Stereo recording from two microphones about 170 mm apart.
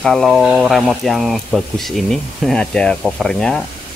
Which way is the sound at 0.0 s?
Centre (ahead or behind).